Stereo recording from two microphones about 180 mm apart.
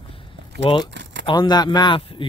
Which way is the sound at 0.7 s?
30° left (ahead or behind).